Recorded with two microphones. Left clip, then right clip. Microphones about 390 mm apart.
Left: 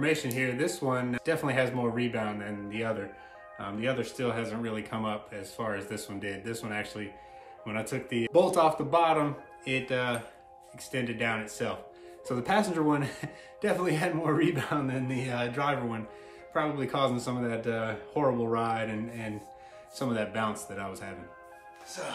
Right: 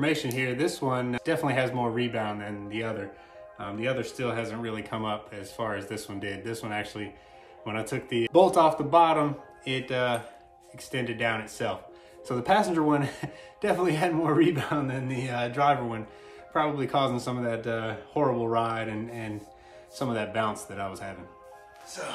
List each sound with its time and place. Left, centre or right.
0.0 s speech: centre